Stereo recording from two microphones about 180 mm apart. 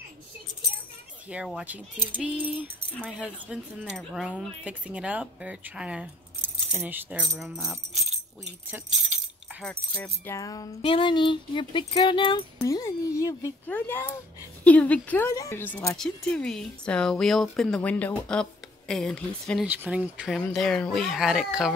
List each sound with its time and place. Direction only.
1.3 s speech: 5° right (ahead or behind)
9.6 s speech: 5° left (ahead or behind); by 12.4 s 25° left (ahead or behind)
12.5 s speech: 15° left (ahead or behind)
19.7 s speech: 10° right (ahead or behind)
20.3 s speech: 5° left (ahead or behind)